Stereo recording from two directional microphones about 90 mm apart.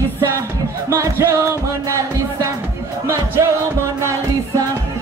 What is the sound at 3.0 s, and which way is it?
Music, 30° right (ahead or behind).